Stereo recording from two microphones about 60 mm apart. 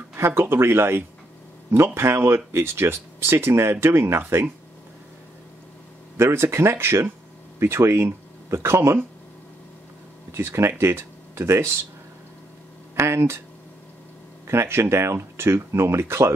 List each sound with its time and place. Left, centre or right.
0.1 s speech: right
6.1 s speech: right
10.3 s speech: right
12.9 s speech: right
14.5 s speech: right